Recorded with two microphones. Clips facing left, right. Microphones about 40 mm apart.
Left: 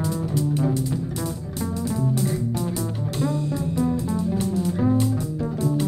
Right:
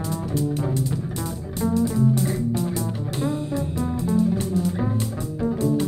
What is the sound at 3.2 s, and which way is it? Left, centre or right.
Music, right.